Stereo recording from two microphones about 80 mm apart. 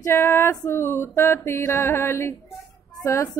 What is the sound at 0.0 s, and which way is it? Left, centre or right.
Female singing, left.